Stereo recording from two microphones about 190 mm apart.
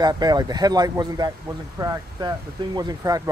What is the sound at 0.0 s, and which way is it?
Speech, 20° right (ahead or behind).